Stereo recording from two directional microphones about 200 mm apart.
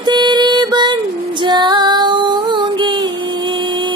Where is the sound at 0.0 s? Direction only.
20° right (ahead or behind).